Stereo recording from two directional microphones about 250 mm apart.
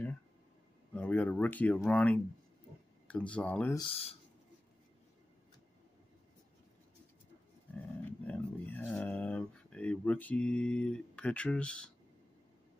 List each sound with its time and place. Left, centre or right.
0.9 s speech: centre
3.8 s speech: left
8.0 s a sound: centre